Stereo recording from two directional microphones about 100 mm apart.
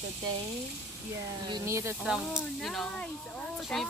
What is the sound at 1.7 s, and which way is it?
Speech, 30° right (ahead or behind).